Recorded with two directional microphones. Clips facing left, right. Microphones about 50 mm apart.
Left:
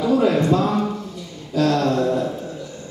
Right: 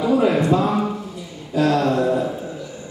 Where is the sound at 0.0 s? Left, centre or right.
Centre.